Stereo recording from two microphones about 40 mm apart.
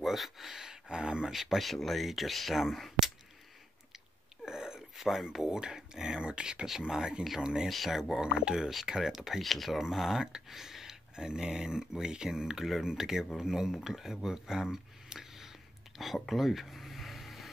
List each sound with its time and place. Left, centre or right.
0.0 s speech: centre; by 1.3 s right
1.3 s speech: centre
4.5 s a sound: centre
5.3 s speech: centre
7.6 s speech: centre
7.9 s speech: centre
8.3 s speech: right
9.4 s speech: centre
15.9 s a sound: centre